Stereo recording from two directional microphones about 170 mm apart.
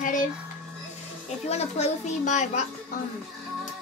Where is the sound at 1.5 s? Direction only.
40° left (ahead or behind).